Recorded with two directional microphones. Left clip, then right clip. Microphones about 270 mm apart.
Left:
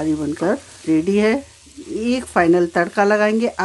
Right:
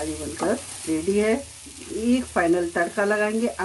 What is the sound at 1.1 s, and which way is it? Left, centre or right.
Speech, left.